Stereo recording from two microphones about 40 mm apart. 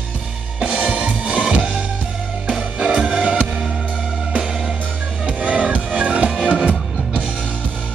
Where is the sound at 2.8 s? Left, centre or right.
Right.